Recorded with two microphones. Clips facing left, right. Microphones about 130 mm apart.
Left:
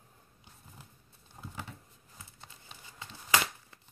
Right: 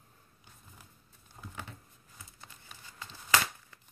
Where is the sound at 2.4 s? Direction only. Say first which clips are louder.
Even; 25° left (ahead or behind).